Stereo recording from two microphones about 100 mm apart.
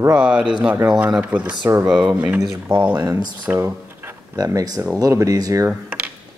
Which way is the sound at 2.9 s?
40° right (ahead or behind).